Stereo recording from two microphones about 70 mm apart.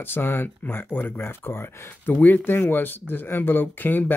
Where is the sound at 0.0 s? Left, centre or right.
Left.